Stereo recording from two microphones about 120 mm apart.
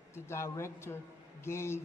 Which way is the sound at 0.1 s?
20° left (ahead or behind).